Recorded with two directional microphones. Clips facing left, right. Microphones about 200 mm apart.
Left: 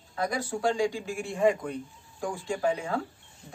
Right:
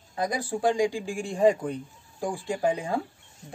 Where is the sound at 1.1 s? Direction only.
30° right (ahead or behind).